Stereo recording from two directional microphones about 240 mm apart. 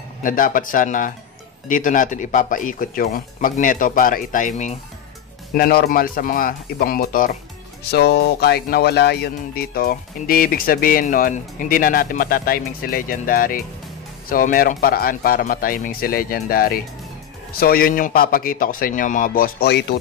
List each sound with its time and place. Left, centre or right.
0.2 s speech: left